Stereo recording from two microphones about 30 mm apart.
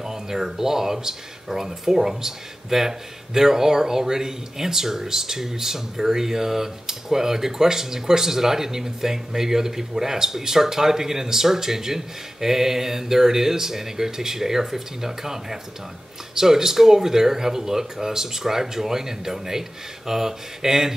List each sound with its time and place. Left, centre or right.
0.0 s speech: centre